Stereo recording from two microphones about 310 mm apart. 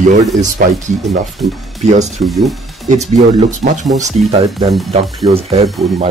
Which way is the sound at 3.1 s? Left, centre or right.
Right.